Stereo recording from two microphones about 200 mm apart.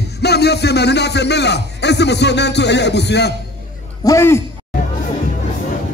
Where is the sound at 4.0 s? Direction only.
15° left (ahead or behind).